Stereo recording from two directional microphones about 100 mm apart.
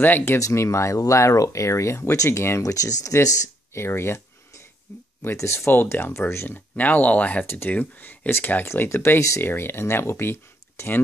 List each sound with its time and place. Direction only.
0.0 s speech: 20° left (ahead or behind)
4.9 s a sound: 25° left (ahead or behind)
5.2 s speech: 25° left (ahead or behind)